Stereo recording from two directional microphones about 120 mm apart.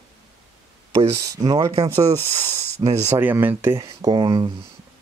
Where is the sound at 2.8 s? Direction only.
20° right (ahead or behind).